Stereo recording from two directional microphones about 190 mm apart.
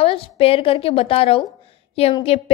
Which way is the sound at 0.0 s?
30° left (ahead or behind).